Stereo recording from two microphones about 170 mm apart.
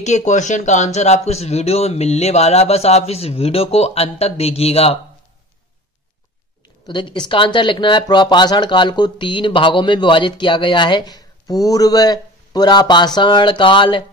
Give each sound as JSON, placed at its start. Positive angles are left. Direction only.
{"t": 0.0, "sound": "speech", "side_deg": 45}
{"t": 6.9, "sound": "speech", "side_deg": 25}